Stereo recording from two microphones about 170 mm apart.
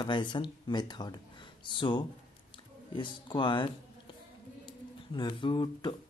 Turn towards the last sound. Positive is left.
turn(degrees=25)  # may be behind; listen again after turning